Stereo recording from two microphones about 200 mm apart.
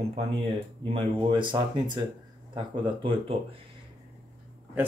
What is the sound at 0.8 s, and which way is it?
Speech, 25° right (ahead or behind).